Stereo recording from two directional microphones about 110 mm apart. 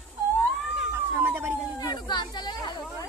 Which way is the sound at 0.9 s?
20° right (ahead or behind).